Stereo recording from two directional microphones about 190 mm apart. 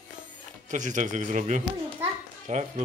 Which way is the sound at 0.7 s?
40° right (ahead or behind).